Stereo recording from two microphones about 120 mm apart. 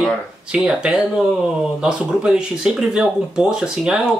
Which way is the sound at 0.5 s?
5° right (ahead or behind).